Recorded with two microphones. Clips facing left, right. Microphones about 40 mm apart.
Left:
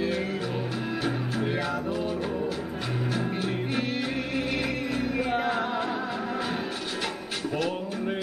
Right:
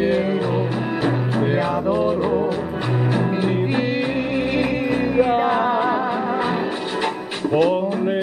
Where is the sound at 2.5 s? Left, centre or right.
Right.